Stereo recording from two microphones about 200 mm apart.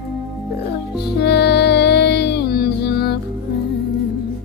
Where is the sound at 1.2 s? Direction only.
55° left (ahead or behind).